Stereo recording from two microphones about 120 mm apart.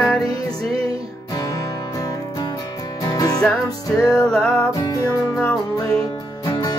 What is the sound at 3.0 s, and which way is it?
Music, 30° left (ahead or behind).